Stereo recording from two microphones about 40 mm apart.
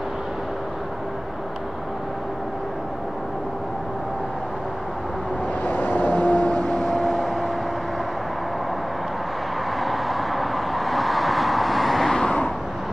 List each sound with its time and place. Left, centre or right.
5.7 s vehicle: left; by 7.2 s centre
9.8 s vehicle: centre
12.1 s vehicle: centre